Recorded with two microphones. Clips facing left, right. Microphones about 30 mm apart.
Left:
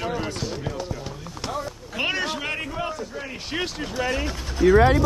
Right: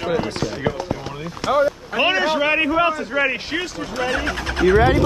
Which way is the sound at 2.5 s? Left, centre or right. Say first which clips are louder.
Right 12 dB; right.